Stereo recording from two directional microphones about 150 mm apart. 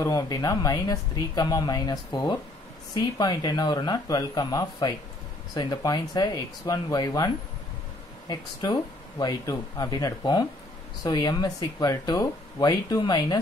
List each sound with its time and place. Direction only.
0.0 s speech: 25° left (ahead or behind)